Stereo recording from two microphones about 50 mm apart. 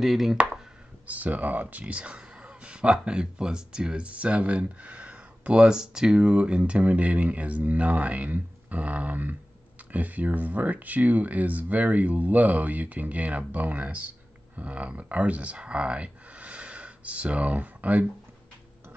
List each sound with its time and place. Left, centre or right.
0.0 s speech: centre
1.0 s speech: right